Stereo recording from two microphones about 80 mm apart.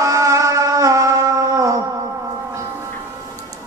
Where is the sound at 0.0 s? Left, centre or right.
Right.